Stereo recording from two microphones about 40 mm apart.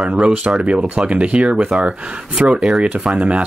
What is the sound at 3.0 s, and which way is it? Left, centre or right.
Speech, centre.